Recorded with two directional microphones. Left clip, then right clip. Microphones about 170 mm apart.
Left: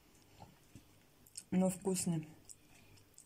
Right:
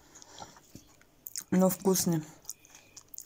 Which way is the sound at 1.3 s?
5° left (ahead or behind).